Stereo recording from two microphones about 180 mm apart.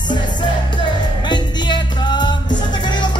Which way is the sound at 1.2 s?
25° left (ahead or behind).